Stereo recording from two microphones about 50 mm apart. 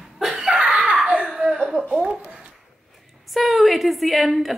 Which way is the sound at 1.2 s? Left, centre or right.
Centre.